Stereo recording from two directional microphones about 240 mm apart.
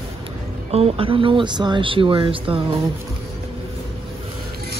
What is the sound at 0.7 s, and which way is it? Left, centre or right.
Speech, right.